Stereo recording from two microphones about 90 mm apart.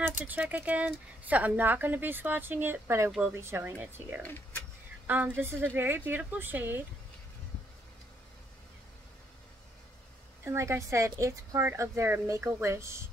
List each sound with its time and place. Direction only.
0.3 s speech: 20° right (ahead or behind)
4.2 s speech: 20° left (ahead or behind)
5.0 s speech: 20° right (ahead or behind)
10.4 s a woman's voice: 30° right (ahead or behind)